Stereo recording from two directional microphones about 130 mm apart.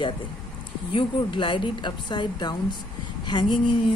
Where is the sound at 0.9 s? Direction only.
40° left (ahead or behind).